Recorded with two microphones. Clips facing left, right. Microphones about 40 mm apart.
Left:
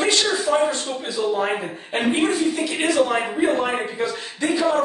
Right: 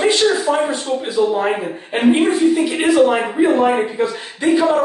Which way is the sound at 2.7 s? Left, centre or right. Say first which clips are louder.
Right 6 dB; centre.